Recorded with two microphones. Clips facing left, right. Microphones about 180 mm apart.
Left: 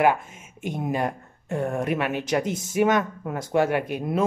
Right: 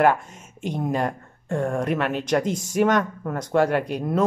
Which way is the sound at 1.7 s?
5° left (ahead or behind).